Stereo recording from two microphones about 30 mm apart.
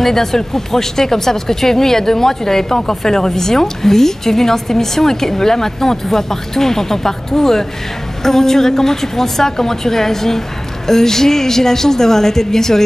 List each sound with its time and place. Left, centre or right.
0.0 s speech: centre